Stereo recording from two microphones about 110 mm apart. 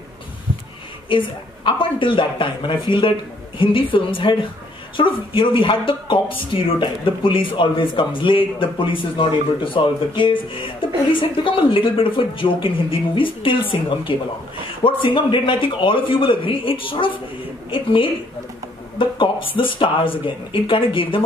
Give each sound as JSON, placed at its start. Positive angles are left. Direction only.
{"t": 1.0, "sound": "speech", "side_deg": 50}